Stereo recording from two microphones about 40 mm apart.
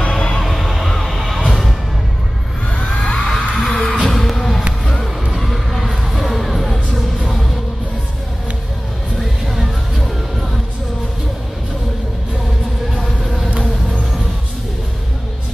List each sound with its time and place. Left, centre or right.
0.1 s music: left
0.4 s a sound: centre
3.0 s heart sounds: centre
3.8 s heart sounds: left
4.1 s a sound: centre
5.3 s crowd: centre
6.1 s music: centre
9.2 s music: centre